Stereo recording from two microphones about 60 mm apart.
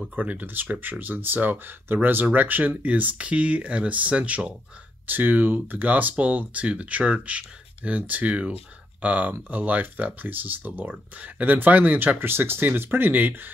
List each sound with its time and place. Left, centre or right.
0.1 s speech: right
5.0 s speech: right